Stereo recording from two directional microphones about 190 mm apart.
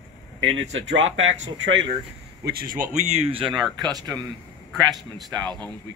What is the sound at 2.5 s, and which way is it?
Speech, 50° right (ahead or behind).